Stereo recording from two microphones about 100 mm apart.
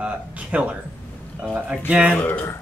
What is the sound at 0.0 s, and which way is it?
Speech, 10° right (ahead or behind).